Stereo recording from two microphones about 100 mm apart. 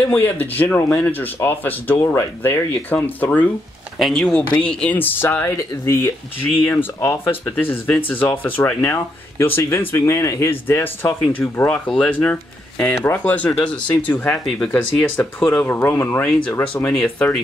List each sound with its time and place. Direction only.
0.0 s speech: 20° left (ahead or behind)
4.0 s speech: 5° left (ahead or behind); by 16.3 s 20° left (ahead or behind)
16.6 s speech: 10° left (ahead or behind)